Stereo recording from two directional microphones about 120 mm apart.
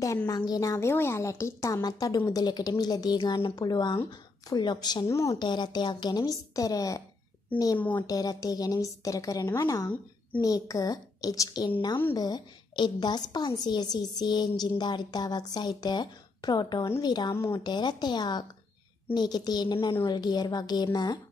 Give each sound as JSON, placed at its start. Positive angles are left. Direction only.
{"t": 0.5, "sound": "a woman's voice", "side_deg": 30}
{"t": 5.0, "sound": "a woman's voice", "side_deg": 25}
{"t": 5.4, "sound": "a woman's voice", "side_deg": 40}
{"t": 17.3, "sound": "a woman's voice", "side_deg": 20}
{"t": 17.6, "sound": "a woman's voice", "side_deg": 40}